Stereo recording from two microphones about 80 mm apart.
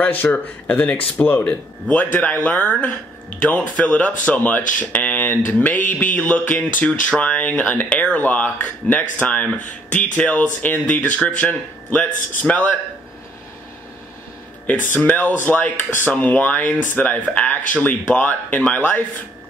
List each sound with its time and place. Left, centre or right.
0.0 s speech: left
14.7 s speech: centre